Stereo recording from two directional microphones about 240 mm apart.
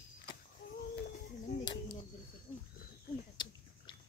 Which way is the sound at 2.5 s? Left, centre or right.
Centre.